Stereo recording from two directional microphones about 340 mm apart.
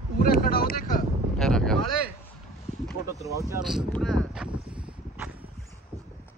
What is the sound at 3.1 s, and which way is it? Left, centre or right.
Speech, centre.